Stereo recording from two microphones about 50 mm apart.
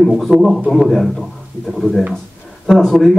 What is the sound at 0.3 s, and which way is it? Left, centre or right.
Speech, centre.